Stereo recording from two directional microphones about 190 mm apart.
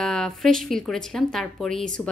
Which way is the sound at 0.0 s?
Centre (ahead or behind).